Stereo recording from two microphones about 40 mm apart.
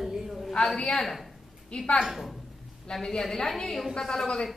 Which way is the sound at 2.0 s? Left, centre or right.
Centre.